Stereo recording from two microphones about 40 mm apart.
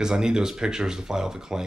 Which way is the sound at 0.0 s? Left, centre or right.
Centre.